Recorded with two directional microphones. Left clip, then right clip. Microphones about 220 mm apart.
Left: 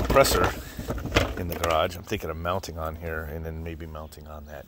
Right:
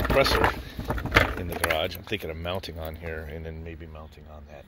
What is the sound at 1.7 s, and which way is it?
Speech, 15° left (ahead or behind).